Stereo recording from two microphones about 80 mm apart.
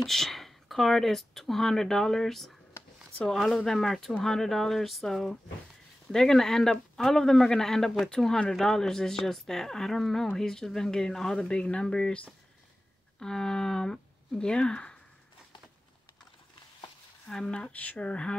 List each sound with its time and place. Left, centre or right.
0.0 s speech: centre
2.8 s a sound: left
3.3 s a man's voice: centre
13.2 s speech: centre
17.3 s speech: centre